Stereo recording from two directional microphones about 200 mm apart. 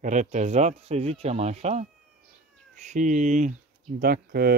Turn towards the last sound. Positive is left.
turn(degrees=-50)  # may be behind; listen again after turning